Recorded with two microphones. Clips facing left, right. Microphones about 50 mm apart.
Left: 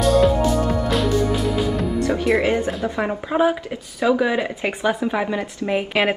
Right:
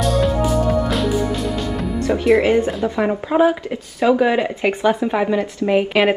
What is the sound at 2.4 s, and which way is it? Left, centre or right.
Speech, right.